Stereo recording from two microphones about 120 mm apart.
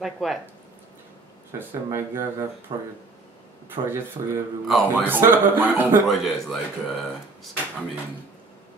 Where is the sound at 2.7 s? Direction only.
40° right (ahead or behind).